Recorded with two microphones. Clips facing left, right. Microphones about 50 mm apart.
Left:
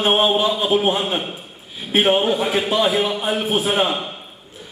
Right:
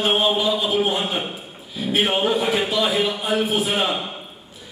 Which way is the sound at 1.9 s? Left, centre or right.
Left.